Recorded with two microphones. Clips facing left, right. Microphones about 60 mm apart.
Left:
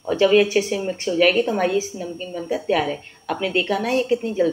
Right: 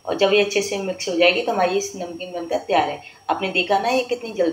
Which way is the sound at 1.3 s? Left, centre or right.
Right.